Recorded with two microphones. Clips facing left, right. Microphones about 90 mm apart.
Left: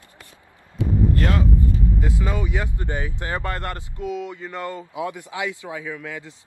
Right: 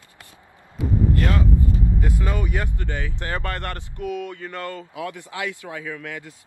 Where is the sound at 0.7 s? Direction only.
25° left (ahead or behind).